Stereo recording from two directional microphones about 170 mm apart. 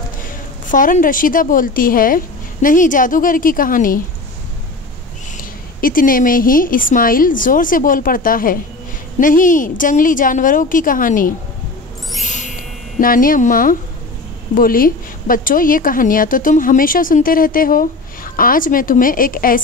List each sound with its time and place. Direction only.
0.2 s a woman's voice: 50° left (ahead or behind)
5.4 s a woman's voice: 55° left (ahead or behind)
12.2 s music: 45° left (ahead or behind)
13.0 s speech: 55° left (ahead or behind)